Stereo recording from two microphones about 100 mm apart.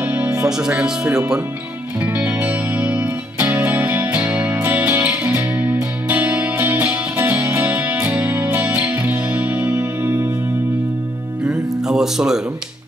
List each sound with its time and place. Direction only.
0.0 s music: 15° right (ahead or behind)
0.5 s speech: 5° right (ahead or behind)
2.0 s music: 15° right (ahead or behind)
11.4 s music: 5° right (ahead or behind)